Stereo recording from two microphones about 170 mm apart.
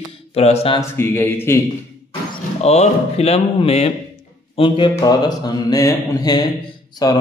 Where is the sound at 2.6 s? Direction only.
40° left (ahead or behind).